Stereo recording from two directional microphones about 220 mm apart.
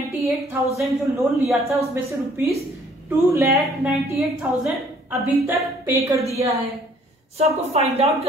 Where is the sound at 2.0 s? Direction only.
10° right (ahead or behind).